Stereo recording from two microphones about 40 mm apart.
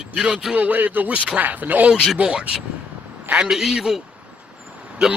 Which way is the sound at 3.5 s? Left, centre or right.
Centre.